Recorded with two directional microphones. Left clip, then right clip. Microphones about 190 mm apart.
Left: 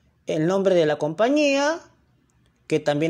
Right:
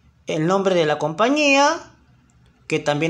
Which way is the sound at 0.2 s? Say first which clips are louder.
Right 2 dB; 20° left (ahead or behind).